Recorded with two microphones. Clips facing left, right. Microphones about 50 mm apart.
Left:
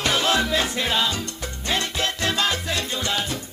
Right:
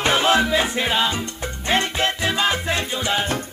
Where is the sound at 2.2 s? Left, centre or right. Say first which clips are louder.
Right 1 dB; centre.